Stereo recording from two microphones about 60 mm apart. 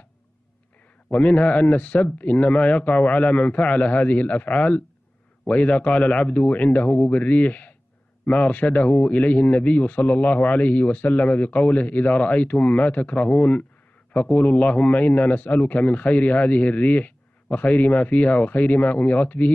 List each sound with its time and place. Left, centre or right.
1.0 s a man's voice: left